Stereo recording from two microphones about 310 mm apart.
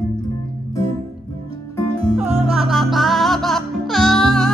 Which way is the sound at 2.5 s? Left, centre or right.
Centre.